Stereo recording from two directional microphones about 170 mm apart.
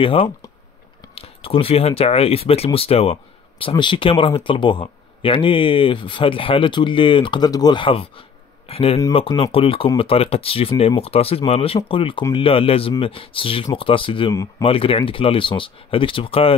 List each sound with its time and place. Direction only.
0.0 s speech: 30° left (ahead or behind)